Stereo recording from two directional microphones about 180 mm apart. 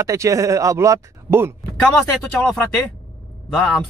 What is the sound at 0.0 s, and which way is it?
Speech, 15° right (ahead or behind).